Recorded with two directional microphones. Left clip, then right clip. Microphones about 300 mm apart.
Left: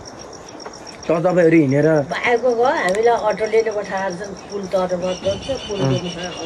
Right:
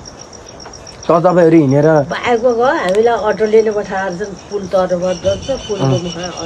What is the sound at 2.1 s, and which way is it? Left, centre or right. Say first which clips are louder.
Speech: right 4 dB; right.